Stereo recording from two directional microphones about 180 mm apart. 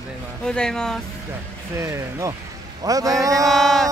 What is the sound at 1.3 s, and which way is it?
A man's voice, 15° right (ahead or behind).